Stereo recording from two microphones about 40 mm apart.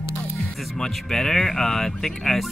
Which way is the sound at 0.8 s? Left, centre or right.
Centre.